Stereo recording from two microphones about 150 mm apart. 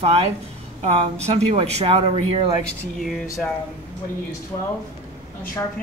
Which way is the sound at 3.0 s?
Centre (ahead or behind).